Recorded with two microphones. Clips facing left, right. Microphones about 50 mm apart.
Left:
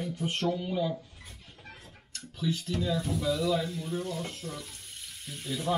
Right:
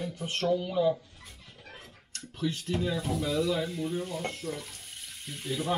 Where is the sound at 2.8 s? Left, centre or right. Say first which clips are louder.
Right 3 dB; centre.